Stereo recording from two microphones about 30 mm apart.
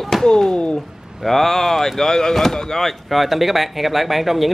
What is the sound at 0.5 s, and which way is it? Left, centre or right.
Speech, left.